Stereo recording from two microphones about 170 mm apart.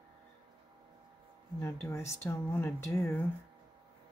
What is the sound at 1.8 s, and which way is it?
Speech, 15° left (ahead or behind).